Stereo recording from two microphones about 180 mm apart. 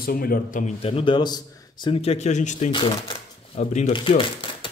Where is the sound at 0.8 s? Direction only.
30° left (ahead or behind).